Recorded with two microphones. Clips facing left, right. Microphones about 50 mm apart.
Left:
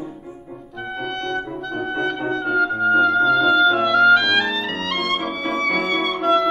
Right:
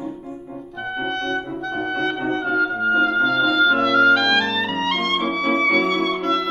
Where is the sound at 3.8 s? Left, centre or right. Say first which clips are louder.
Left 1 dB; centre.